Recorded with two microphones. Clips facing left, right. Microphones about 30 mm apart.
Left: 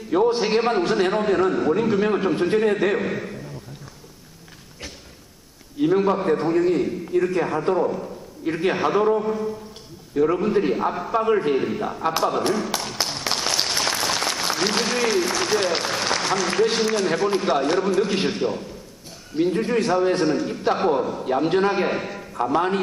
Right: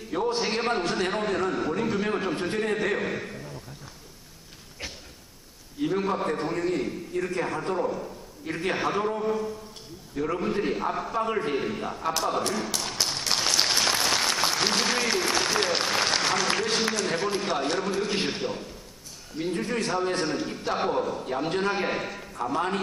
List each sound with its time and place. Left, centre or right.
0.1 s a man's voice: centre
5.8 s a man's voice: centre
11.1 s a man's voice: centre
11.3 s a man's voice: centre
13.3 s applause: centre
15.8 s speech: centre
17.3 s a man's voice: centre
22.3 s a man's voice: centre